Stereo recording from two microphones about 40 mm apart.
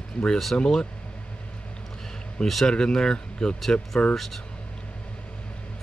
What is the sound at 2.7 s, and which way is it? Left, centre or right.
Speech, centre.